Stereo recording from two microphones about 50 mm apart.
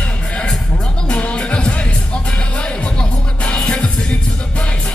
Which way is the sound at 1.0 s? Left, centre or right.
Centre.